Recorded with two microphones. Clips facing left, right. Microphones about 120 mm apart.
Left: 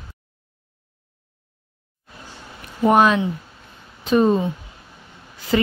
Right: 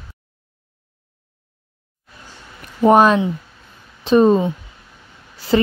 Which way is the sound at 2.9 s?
40° right (ahead or behind).